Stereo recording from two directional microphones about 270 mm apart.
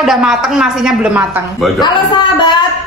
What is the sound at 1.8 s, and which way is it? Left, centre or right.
Speech, centre.